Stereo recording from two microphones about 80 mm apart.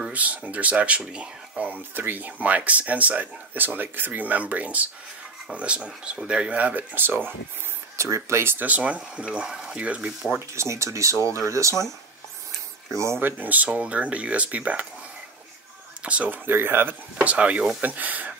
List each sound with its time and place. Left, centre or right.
0.0 s speech: centre
8.0 s speech: right; by 10.4 s centre
10.5 s speech: right
12.9 s speech: right
13.4 s speech: right
16.0 s speech: centre
16.4 s speech: right